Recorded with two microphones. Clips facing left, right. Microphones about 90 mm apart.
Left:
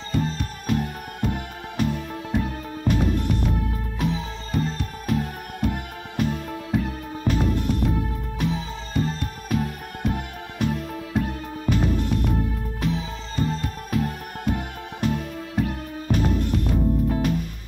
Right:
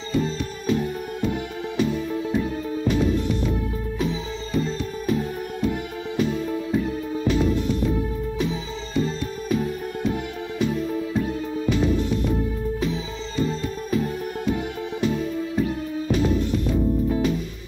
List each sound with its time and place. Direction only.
0.1 s music: 55° left (ahead or behind)